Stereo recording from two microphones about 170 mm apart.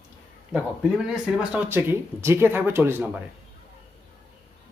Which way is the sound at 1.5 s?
15° right (ahead or behind).